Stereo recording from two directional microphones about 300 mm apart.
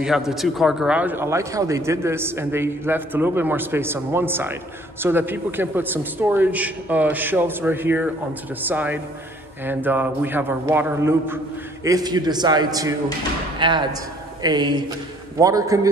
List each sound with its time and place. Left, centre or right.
0.0 s a man's voice: centre